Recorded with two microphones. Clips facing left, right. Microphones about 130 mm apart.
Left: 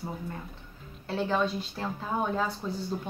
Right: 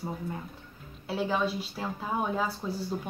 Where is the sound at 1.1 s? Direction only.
5° right (ahead or behind).